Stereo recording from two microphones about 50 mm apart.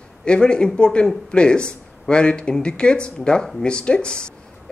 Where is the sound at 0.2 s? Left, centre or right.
Centre.